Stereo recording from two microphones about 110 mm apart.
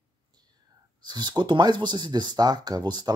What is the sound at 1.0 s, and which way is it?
Speech, 40° right (ahead or behind).